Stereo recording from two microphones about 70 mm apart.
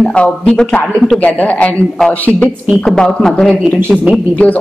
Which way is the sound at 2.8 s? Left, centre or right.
Centre.